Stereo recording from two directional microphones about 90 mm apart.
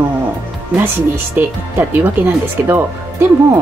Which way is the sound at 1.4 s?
20° right (ahead or behind).